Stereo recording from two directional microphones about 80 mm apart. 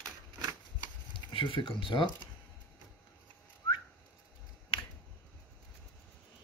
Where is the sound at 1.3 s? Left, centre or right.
Left.